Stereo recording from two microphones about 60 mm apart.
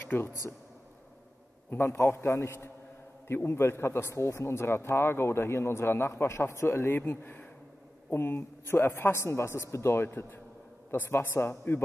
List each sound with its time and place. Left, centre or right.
0.0 s speech: left
1.7 s a man's voice: left